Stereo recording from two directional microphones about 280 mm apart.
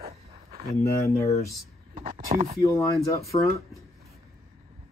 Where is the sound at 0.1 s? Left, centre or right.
Right.